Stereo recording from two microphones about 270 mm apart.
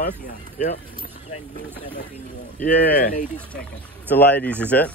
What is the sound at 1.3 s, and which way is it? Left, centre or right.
Speech, left.